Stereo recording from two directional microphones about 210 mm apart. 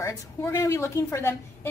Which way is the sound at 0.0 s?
15° left (ahead or behind).